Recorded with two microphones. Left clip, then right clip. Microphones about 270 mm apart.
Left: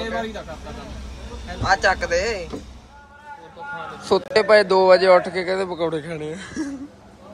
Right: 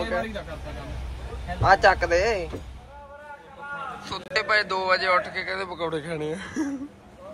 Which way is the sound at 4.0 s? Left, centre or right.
Centre.